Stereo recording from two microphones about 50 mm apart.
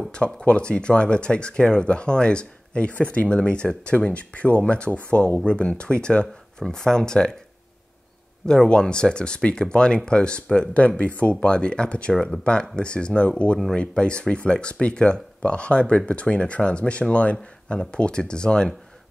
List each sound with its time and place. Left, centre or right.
0.1 s speech: centre
8.5 s speech: centre
12.1 s speech: centre
12.7 s speech: centre